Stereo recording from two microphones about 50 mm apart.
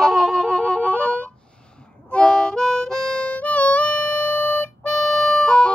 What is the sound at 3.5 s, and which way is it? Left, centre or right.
Music, left.